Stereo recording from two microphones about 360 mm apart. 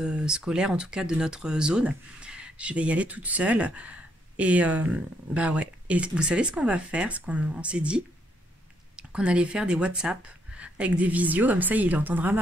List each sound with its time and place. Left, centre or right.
0.0 s speech: centre